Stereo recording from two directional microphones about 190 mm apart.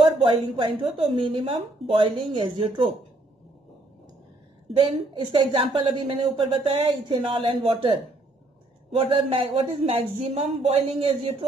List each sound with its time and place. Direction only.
0.0 s a woman's voice: 25° right (ahead or behind)
4.6 s a woman's voice: 30° right (ahead or behind)
8.9 s speech: 30° right (ahead or behind)